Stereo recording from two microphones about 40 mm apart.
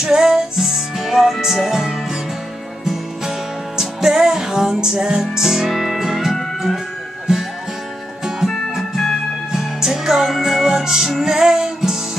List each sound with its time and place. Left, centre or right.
0.0 s music: centre
8.7 s music: centre